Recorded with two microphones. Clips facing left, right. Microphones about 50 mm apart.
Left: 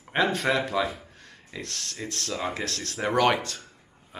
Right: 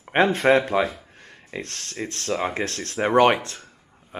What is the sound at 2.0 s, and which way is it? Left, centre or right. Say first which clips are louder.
A man's voice: right 5 dB; right.